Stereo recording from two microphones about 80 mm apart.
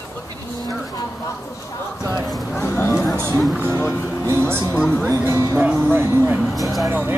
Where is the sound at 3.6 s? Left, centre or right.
Right.